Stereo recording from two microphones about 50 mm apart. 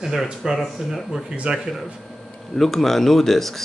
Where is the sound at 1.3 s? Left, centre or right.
Centre.